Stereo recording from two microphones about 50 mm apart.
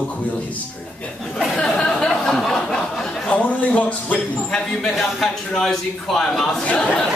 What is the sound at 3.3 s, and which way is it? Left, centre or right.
Speech, left.